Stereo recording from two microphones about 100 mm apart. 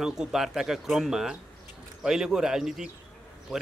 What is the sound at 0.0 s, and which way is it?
A man's voice, 5° right (ahead or behind).